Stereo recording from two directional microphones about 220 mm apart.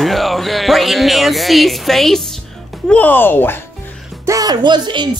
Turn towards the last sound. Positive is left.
turn(degrees=-20)  # may be behind; listen again after turning